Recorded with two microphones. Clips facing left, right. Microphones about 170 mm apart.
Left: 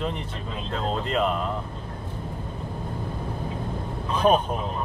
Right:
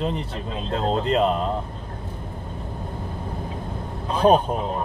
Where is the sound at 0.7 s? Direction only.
30° right (ahead or behind).